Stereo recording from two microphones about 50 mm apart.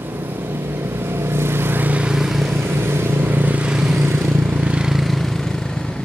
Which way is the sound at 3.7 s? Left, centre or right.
Centre.